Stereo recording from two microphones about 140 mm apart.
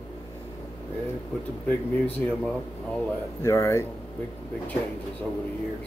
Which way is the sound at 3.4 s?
20° left (ahead or behind).